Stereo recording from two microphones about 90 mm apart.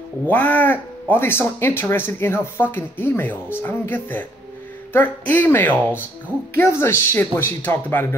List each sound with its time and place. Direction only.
0.3 s speech: 20° left (ahead or behind)